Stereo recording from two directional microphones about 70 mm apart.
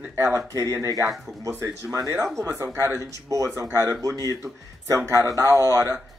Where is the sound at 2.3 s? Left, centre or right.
Right.